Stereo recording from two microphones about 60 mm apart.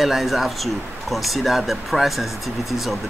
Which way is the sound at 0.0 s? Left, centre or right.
Centre.